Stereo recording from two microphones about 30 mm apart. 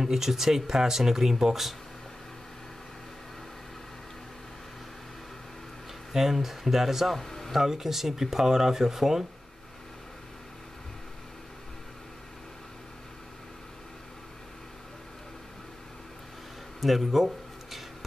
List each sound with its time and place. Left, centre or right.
0.0 s speech: centre
6.1 s speech: centre
7.2 s speech: centre
7.5 s speech: centre
16.8 s speech: centre